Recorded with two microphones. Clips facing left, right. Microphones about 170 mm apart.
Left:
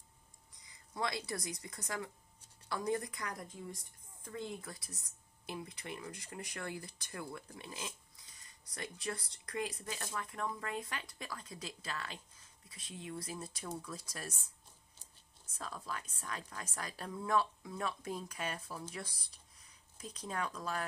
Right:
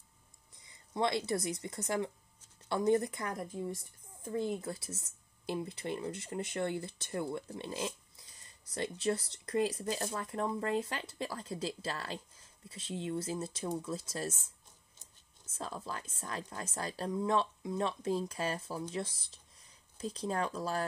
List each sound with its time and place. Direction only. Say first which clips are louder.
0.6 s speech: right 6 dB; 25° right (ahead or behind)